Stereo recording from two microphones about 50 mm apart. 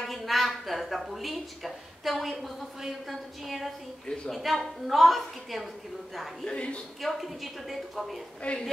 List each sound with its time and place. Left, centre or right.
0.0 s a woman's voice: centre
6.4 s a woman's voice: left
7.0 s a woman's voice: centre
8.4 s a woman's voice: left